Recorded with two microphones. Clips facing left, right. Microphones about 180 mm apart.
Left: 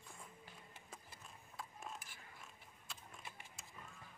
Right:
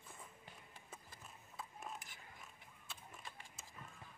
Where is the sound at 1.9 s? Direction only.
20° right (ahead or behind).